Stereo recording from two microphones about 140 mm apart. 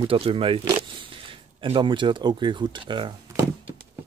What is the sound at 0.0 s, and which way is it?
A man's voice, 40° right (ahead or behind).